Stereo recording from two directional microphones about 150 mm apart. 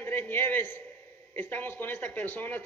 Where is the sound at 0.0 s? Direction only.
15° left (ahead or behind).